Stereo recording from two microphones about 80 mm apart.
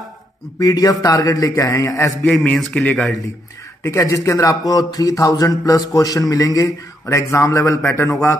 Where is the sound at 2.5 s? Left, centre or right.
Centre.